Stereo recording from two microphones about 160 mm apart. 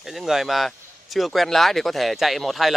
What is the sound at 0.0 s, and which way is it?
Speech, centre (ahead or behind).